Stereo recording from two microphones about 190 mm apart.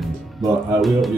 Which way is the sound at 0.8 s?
Centre (ahead or behind).